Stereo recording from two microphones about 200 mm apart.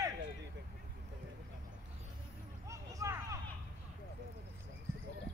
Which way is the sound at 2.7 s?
15° right (ahead or behind).